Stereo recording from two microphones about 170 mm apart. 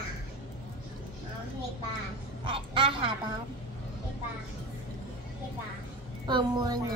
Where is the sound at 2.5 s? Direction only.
30° right (ahead or behind).